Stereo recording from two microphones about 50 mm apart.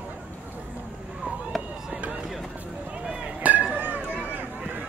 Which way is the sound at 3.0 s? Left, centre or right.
Right.